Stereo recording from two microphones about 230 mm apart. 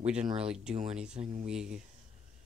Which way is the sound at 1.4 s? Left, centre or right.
Centre.